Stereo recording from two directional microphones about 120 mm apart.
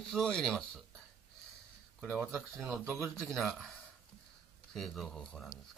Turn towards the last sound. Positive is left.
turn(degrees=5)  # may be behind; listen again after turning